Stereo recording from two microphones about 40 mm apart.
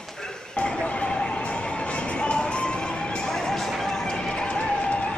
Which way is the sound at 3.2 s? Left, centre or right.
Centre.